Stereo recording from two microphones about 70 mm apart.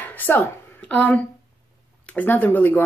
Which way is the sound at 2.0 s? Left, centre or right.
Left.